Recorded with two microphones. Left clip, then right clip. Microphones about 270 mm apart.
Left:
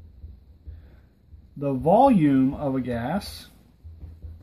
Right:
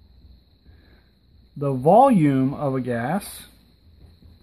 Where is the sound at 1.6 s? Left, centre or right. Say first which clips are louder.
Right 3 dB; right.